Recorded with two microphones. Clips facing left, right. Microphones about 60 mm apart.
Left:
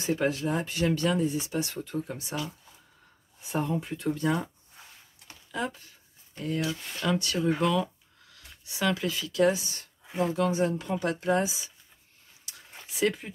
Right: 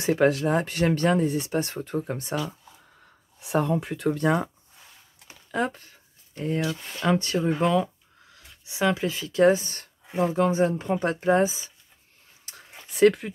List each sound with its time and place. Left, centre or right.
0.0 s speech: right
3.3 s speech: right
5.5 s speech: right
6.3 s speech: right
10.2 s speech: right
12.5 s a sound: right
12.9 s speech: right